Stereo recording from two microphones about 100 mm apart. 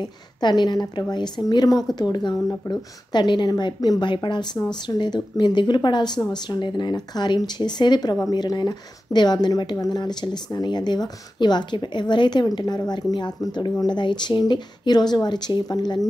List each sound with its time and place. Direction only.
0.0 s speech: 50° left (ahead or behind)